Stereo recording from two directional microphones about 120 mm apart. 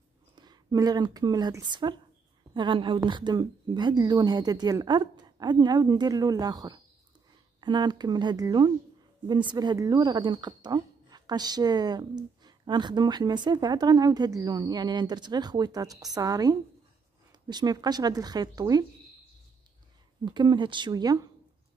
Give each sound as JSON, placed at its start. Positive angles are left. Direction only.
{"t": 0.4, "sound": "a woman's voice", "side_deg": -35}
{"t": 20.2, "sound": "a woman's voice", "side_deg": -40}